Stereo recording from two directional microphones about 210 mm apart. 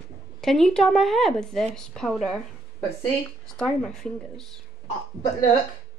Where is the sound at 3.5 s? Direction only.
5° left (ahead or behind).